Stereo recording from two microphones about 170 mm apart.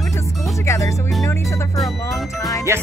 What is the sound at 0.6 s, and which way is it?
Speech, 15° left (ahead or behind).